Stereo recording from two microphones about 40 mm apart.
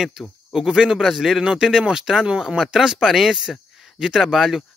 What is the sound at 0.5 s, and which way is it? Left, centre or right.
Speech, centre.